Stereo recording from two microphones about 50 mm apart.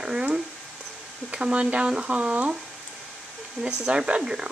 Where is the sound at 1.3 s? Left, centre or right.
Right.